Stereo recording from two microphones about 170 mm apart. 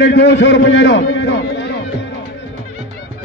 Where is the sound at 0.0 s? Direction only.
90° left.